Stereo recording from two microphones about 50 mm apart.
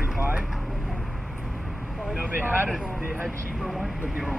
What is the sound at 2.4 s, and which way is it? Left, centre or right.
Speech, right.